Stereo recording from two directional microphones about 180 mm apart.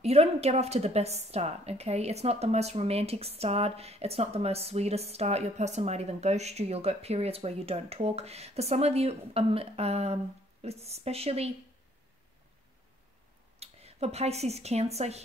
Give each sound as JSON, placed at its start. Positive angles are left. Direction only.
{"t": 0.0, "sound": "a woman's voice", "side_deg": -35}
{"t": 13.6, "sound": "speech", "side_deg": -35}